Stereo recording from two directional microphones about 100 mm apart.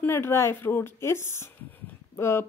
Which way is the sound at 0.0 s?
25° left (ahead or behind).